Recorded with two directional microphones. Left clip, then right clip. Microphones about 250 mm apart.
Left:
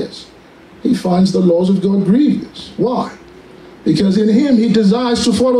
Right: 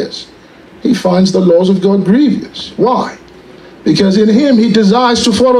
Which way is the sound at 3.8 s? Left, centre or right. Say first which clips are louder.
Right 5 dB; right.